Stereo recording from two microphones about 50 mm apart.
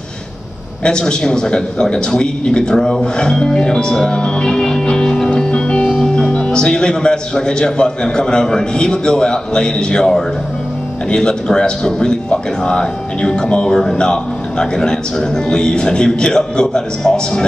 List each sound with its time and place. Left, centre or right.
0.8 s a man's voice: centre
5.3 s music: centre
6.3 s a man's voice: centre